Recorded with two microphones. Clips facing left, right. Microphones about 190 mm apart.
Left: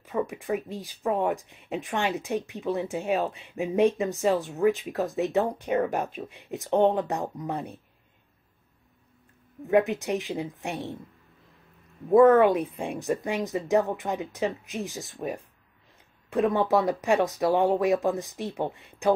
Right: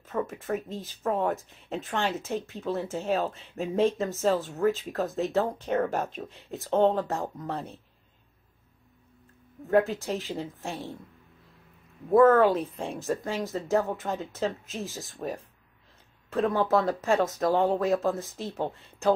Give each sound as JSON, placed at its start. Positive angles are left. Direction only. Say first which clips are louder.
{"t": 0.0, "sound": "speech", "louder": "left 2 dB", "side_deg": 10}
{"t": 5.0, "sound": "speech", "louder": "left 2 dB", "side_deg": 0}
{"t": 5.6, "sound": "speech", "louder": "left 1 dB", "side_deg": 15}
{"t": 9.7, "sound": "speech", "louder": "left 1 dB", "side_deg": 20}
{"t": 12.1, "sound": "speech", "louder": "left 2 dB", "side_deg": 15}
{"t": 16.3, "sound": "speech", "louder": "left 2 dB", "side_deg": 15}